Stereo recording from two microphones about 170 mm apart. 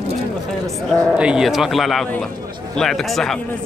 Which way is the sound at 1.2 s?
5° right (ahead or behind).